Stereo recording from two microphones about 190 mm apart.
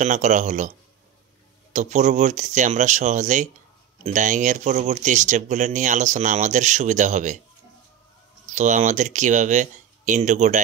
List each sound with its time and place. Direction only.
0.0 s speech: 40° right (ahead or behind)
8.5 s speech: 40° right (ahead or behind)